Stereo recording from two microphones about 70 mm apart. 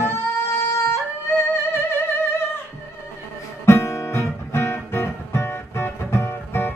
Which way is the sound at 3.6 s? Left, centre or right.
Left.